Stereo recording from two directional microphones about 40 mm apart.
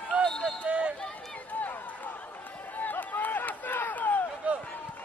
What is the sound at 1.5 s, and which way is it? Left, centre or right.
Run, left.